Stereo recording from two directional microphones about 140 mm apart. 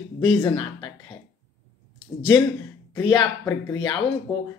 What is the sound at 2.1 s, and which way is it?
Speech, 15° left (ahead or behind).